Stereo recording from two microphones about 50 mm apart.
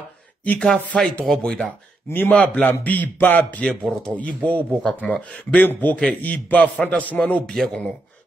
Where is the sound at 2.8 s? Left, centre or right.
Left.